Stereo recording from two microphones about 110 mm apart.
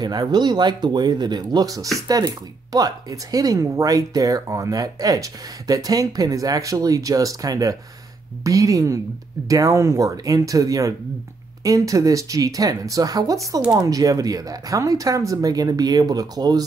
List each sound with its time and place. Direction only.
0.0 s a woman's voice: 40° right (ahead or behind)